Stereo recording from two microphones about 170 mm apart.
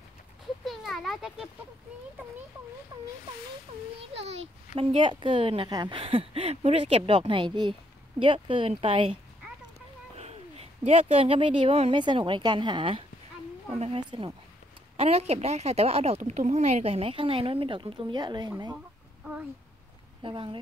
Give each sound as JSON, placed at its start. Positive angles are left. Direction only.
{"t": 0.7, "sound": "a sound", "side_deg": 0}
{"t": 4.7, "sound": "speech", "side_deg": -30}
{"t": 20.2, "sound": "speech", "side_deg": -30}